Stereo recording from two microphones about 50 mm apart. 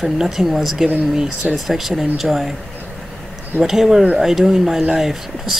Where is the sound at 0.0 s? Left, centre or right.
Centre.